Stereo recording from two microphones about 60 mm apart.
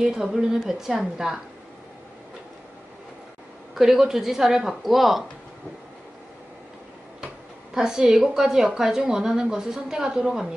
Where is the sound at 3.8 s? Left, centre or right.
Centre.